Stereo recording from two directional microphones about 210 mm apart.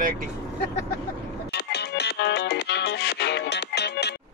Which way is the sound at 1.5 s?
50° left (ahead or behind).